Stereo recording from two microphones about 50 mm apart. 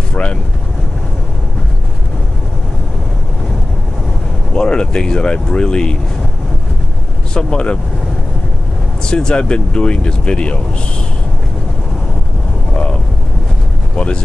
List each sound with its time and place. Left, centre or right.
0.1 s speech: left
4.6 s speech: centre
7.3 s speech: centre
9.0 s speech: centre
13.9 s speech: left